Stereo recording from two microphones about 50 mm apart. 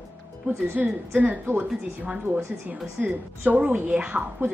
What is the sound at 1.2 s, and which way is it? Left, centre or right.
Speech, right.